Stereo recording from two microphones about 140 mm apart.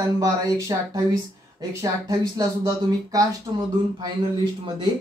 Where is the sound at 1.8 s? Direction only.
25° right (ahead or behind).